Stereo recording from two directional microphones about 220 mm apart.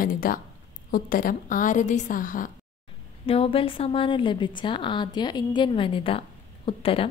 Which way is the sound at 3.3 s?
25° left (ahead or behind).